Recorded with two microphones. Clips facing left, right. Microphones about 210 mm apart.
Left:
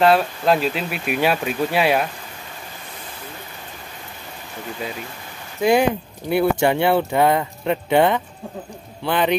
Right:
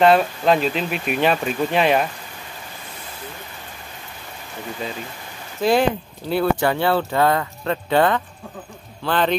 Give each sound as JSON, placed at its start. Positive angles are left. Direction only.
{"t": 0.0, "sound": "speech", "side_deg": 0}
{"t": 5.6, "sound": "a man's voice", "side_deg": 15}